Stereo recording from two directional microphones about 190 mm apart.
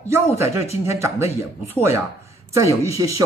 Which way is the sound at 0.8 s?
15° right (ahead or behind).